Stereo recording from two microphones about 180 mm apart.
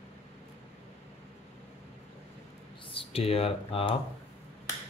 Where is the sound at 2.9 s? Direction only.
30° left (ahead or behind).